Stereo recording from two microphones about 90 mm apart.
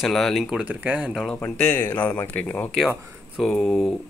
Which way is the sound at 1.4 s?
15° left (ahead or behind).